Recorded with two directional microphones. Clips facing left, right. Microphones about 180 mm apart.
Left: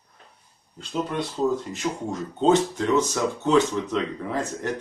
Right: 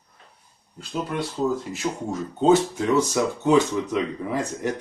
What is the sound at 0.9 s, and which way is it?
Speech, 5° right (ahead or behind).